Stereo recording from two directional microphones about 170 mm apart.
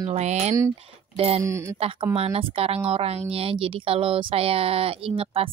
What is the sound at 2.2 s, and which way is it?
Speech, 35° right (ahead or behind).